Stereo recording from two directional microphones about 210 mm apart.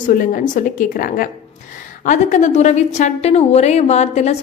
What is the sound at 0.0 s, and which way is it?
A woman's voice, 40° left (ahead or behind).